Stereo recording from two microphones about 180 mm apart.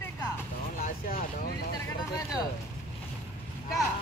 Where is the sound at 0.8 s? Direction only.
55° left (ahead or behind).